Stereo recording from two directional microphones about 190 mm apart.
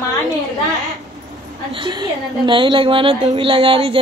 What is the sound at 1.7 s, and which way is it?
A woman's voice, 25° right (ahead or behind).